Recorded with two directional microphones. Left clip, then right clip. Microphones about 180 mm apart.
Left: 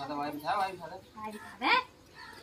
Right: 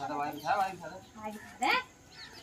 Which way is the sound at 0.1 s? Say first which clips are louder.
Even; 20° left (ahead or behind).